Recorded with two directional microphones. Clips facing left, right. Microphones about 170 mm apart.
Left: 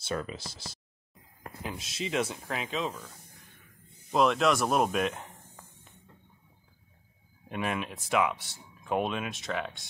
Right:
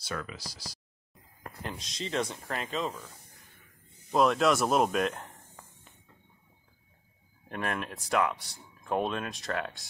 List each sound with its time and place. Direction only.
0.0 s speech: 25° left (ahead or behind)
1.6 s speech: 5° left (ahead or behind)
4.1 s speech: centre (ahead or behind)
7.4 s speech: 5° left (ahead or behind)